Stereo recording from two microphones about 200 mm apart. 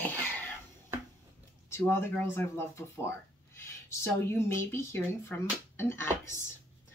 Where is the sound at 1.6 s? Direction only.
10° left (ahead or behind).